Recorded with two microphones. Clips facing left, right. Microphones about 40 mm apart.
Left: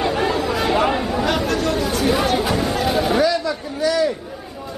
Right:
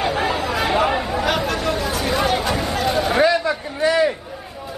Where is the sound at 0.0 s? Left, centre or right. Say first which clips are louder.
Left 1 dB; centre.